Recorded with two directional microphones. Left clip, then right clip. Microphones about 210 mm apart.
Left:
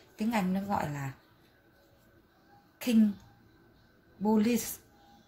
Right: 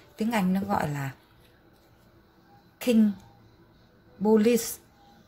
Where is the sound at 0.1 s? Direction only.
15° right (ahead or behind).